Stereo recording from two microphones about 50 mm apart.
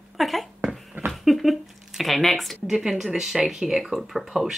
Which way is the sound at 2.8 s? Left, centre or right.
Centre.